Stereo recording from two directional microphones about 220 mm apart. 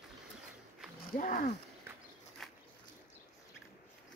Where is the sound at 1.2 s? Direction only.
35° left (ahead or behind).